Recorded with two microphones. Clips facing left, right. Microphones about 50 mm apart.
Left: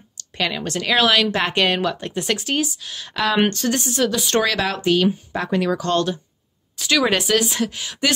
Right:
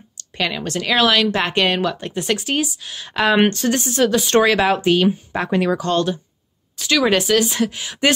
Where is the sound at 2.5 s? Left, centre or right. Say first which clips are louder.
Right 1 dB; centre; by 4.2 s right.